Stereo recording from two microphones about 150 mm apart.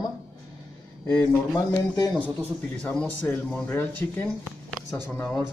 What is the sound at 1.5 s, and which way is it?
Speech, 25° left (ahead or behind).